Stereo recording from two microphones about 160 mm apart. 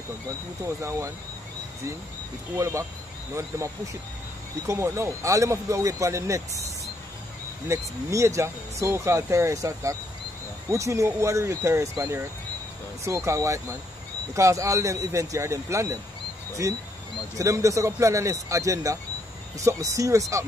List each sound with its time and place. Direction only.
2.5 s speech: 20° right (ahead or behind)
7.7 s speech: 20° right (ahead or behind)